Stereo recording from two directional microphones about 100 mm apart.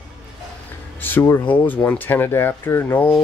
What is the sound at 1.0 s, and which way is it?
Speech, 20° left (ahead or behind).